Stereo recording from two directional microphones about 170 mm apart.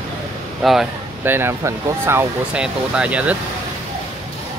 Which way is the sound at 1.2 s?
15° right (ahead or behind).